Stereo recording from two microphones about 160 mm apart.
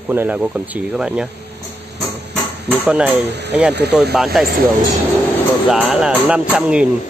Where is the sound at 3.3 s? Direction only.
90° right.